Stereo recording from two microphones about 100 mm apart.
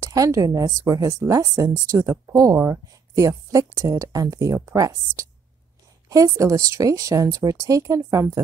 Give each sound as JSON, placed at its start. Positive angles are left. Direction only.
{"t": 0.0, "sound": "a woman's voice", "side_deg": -35}